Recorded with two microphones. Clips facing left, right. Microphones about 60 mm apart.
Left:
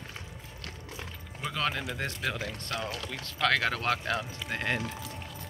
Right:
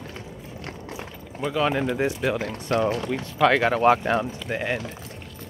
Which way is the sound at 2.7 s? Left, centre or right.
Right.